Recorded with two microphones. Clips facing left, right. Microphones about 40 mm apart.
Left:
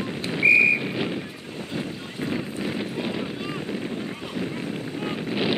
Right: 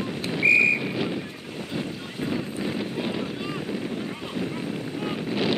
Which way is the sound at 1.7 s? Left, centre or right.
Centre.